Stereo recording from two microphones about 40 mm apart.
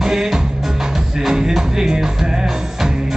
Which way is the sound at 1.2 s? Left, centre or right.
Centre.